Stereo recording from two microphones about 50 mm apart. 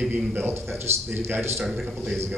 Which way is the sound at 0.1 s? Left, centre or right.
Right.